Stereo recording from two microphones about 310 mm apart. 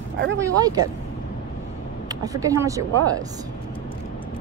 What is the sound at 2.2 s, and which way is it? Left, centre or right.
Speech, centre.